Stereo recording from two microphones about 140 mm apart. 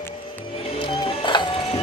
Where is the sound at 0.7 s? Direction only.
35° left (ahead or behind).